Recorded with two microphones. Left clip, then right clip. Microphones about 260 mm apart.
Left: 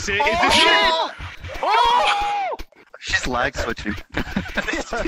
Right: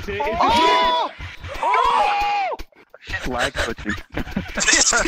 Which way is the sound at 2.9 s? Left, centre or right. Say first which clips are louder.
Left 5 dB; left.